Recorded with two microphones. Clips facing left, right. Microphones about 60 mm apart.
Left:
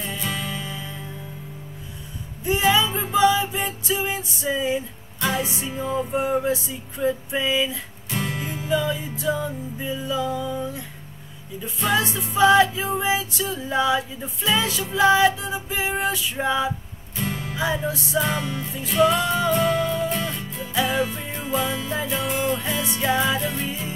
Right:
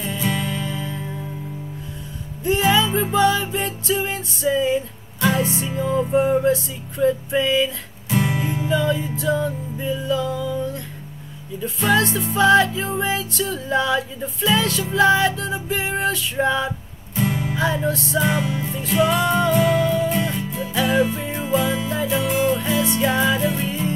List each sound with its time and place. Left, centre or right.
0.3 s music: centre
2.4 s music: centre
8.1 s music: centre
10.2 s music: left
11.9 s music: centre
17.3 s music: centre
17.8 s music: centre
18.2 s music: centre
18.7 s music: centre
18.9 s music: centre